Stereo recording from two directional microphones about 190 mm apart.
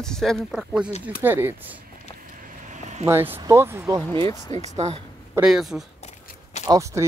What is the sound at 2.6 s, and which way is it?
Vehicle, 40° right (ahead or behind).